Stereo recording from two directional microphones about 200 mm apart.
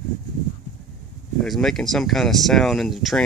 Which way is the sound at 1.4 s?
Centre (ahead or behind).